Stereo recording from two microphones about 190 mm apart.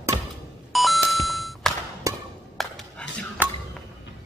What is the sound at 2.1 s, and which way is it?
Chop, 15° right (ahead or behind).